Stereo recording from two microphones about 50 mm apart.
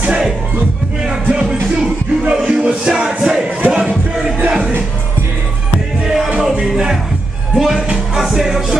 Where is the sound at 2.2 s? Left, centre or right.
Right.